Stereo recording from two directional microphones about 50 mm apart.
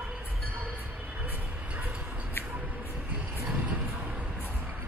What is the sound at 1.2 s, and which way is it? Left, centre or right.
Vehicle, right.